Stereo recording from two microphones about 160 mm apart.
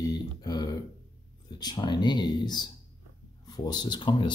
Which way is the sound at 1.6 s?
25° left (ahead or behind).